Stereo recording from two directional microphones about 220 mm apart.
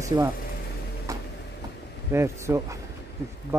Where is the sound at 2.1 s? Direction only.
10° right (ahead or behind).